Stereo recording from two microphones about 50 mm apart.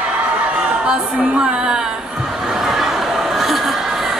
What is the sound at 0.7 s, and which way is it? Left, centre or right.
Music, right.